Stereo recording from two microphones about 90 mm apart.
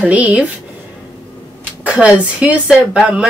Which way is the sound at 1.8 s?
15° right (ahead or behind).